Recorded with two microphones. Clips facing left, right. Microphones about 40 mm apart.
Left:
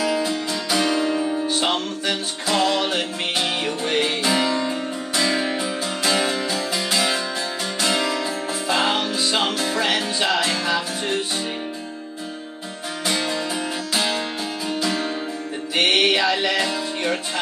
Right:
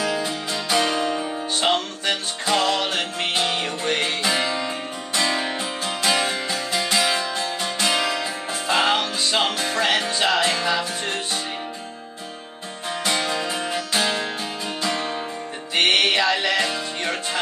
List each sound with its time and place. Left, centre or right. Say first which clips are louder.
0.0 s music: left 2 dB; centre
13.0 s music: even; centre